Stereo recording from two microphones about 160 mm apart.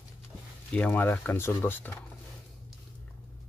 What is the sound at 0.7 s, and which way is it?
Speech, 10° left (ahead or behind).